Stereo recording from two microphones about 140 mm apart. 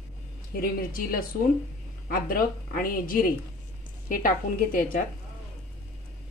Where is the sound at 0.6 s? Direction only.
90° left.